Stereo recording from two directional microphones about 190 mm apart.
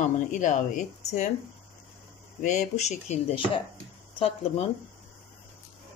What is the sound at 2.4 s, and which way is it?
Speech, 35° left (ahead or behind).